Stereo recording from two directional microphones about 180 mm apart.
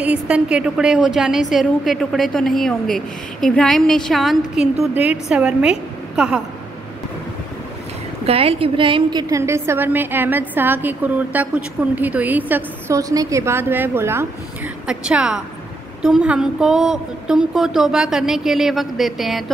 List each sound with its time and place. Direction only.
0.0 s a woman's voice: 5° right (ahead or behind)
8.3 s a woman's voice: 30° right (ahead or behind)
9.3 s a woman's voice: 15° right (ahead or behind)